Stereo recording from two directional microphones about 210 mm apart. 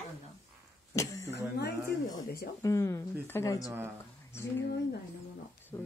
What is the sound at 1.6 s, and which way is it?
Speech, 50° left (ahead or behind).